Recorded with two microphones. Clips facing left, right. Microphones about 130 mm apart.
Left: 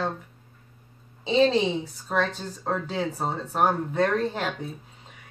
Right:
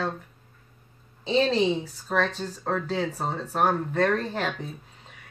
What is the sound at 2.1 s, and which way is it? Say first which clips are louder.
Speech: even; 5° left (ahead or behind).